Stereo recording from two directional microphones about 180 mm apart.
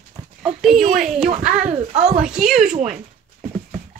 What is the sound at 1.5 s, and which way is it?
Speech, 50° right (ahead or behind).